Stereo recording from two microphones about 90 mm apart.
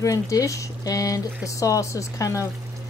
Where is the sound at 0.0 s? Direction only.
40° left (ahead or behind).